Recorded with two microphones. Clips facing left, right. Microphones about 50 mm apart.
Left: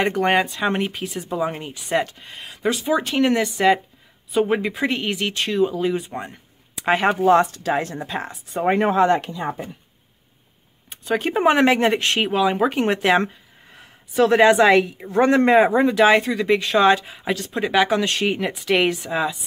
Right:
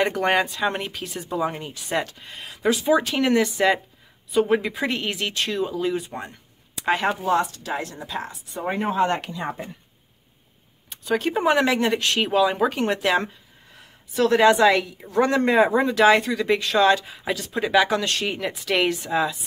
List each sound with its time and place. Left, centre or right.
0.0 s speech: centre
6.8 s speech: centre
7.2 s speech: left
8.7 s speech: left
10.9 s a sound: centre
11.2 s speech: left
12.3 s speech: centre
18.5 s speech: centre